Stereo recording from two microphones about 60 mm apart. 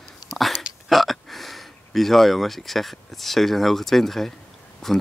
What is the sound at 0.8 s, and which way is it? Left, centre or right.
Speech, centre.